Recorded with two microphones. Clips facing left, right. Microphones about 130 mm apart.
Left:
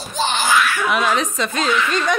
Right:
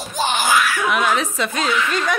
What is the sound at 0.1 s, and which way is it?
Laughter, 15° right (ahead or behind).